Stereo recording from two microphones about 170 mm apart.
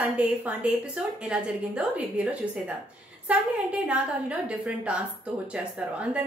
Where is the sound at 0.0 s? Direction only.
10° right (ahead or behind).